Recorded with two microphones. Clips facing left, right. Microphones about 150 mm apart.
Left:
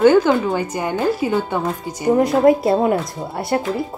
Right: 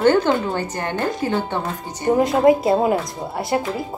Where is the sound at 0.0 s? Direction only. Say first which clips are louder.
Left 3 dB; 10° left (ahead or behind).